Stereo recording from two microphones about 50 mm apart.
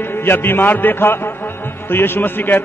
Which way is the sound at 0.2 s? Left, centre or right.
Left.